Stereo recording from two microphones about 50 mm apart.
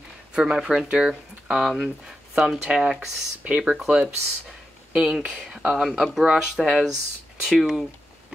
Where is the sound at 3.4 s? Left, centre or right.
Right.